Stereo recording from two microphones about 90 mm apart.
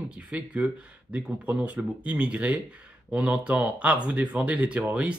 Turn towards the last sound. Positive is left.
turn(degrees=-15)  # may be behind; listen again after turning